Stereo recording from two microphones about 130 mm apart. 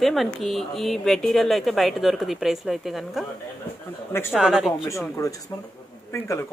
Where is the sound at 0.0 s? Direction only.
Centre (ahead or behind).